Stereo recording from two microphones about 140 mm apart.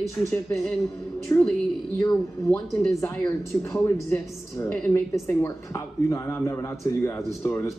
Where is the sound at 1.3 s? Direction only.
25° left (ahead or behind).